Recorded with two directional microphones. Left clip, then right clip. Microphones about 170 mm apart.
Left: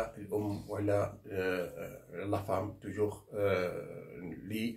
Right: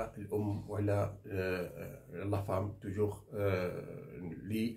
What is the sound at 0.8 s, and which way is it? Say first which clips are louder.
Speech: left 4 dB; 20° right (ahead or behind).